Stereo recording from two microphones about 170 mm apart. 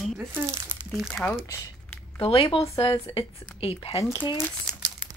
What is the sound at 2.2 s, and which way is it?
A woman's voice, 35° left (ahead or behind).